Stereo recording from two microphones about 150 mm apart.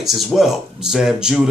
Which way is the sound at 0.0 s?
Centre (ahead or behind).